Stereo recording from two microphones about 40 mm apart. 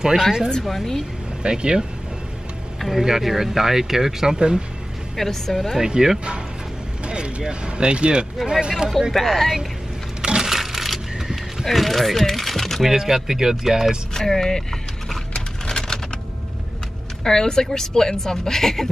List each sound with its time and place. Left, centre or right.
0.0 s speech: centre
0.5 s speech: centre
1.4 s speech: right
2.8 s speech: centre
5.1 s speech: centre
5.7 s speech: centre
9.1 s speech: centre
10.2 s a sound: centre
10.5 s coin: centre
11.6 s speech: centre
12.9 s speech: centre
14.1 s speech: centre
15.3 s a sound: centre
17.2 s speech: centre